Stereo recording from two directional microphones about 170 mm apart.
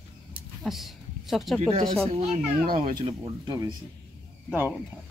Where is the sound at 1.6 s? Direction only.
35° right (ahead or behind).